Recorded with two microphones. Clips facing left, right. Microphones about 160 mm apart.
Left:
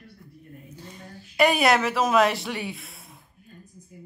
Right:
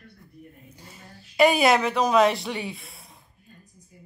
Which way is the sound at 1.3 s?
Centre (ahead or behind).